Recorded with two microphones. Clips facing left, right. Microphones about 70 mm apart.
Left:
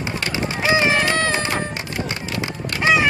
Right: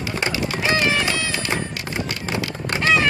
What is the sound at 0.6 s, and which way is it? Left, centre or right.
Music, left.